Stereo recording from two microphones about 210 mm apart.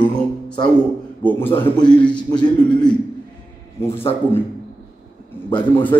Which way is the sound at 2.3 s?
20° left (ahead or behind).